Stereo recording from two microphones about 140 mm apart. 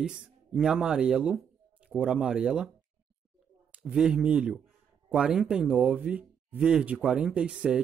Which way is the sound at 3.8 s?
5° right (ahead or behind).